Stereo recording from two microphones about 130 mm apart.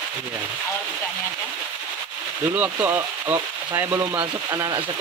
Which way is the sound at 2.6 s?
15° right (ahead or behind).